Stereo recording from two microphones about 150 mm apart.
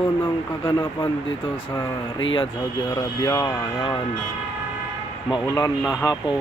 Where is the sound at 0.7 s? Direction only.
25° left (ahead or behind).